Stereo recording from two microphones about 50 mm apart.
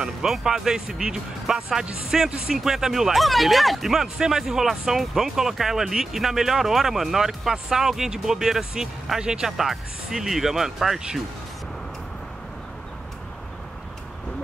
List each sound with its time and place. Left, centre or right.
0.0 s speech: centre